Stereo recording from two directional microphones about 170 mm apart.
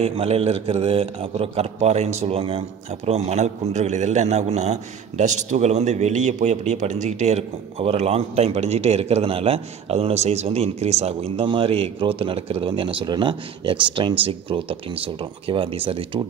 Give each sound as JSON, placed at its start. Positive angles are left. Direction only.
{"t": 0.0, "sound": "a man's voice", "side_deg": -35}